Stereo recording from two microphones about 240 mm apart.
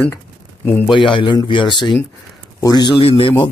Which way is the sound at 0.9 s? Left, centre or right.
Centre.